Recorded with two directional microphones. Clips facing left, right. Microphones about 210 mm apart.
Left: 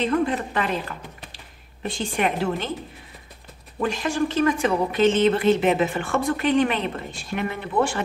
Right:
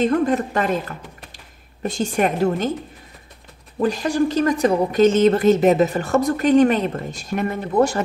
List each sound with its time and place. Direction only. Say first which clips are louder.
0.0 s speech: right 4 dB; 45° right (ahead or behind)
3.8 s speech: right 5 dB; 40° right (ahead or behind)